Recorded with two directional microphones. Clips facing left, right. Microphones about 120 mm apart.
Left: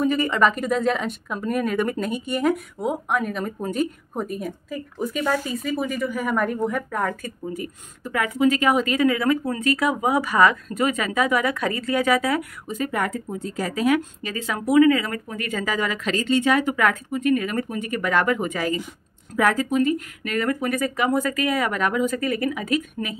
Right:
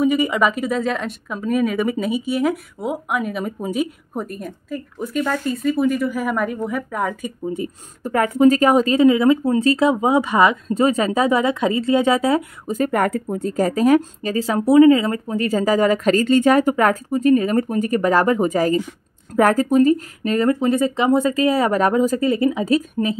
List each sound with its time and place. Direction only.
0.0 s speech: 10° right (ahead or behind)
8.0 s speech: 40° right (ahead or behind)
12.7 s speech: 50° right (ahead or behind); by 23.1 s 30° right (ahead or behind)